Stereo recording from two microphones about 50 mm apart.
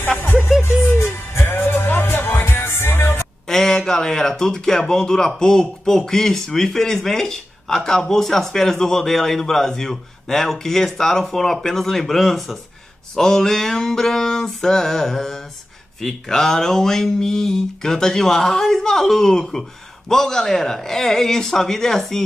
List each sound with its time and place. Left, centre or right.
0.7 s music: left
3.4 s a man's voice: centre